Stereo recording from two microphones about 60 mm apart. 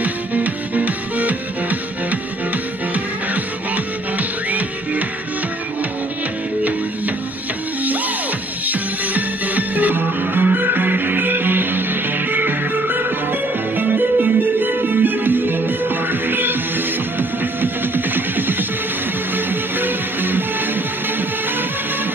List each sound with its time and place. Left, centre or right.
0.0 s music: right
3.7 s music: right
8.6 s music: right